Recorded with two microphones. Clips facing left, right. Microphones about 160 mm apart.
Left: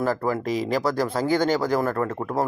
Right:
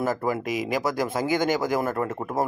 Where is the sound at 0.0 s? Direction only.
15° right (ahead or behind).